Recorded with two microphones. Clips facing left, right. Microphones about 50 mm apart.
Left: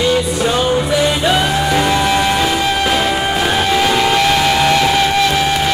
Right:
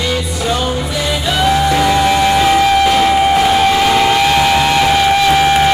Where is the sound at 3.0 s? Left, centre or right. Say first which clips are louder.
Right 5 dB; centre.